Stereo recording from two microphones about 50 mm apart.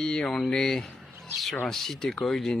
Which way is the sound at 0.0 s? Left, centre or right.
Centre.